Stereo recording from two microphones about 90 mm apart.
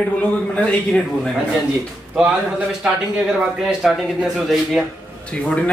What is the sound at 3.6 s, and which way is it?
Speech, 5° right (ahead or behind).